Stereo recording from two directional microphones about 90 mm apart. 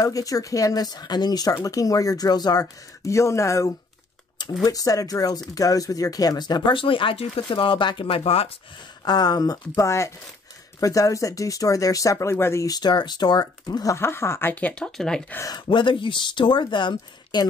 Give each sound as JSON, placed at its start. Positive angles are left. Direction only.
{"t": 0.0, "sound": "speech", "side_deg": 40}
{"t": 1.5, "sound": "speech", "side_deg": 40}
{"t": 9.0, "sound": "speech", "side_deg": 50}
{"t": 12.6, "sound": "speech", "side_deg": 50}
{"t": 13.9, "sound": "speech", "side_deg": 30}
{"t": 14.5, "sound": "speech", "side_deg": 15}
{"t": 15.5, "sound": "speech", "side_deg": 65}